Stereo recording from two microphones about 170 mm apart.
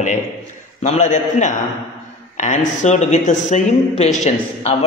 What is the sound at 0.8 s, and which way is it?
A man's voice, 45° left (ahead or behind).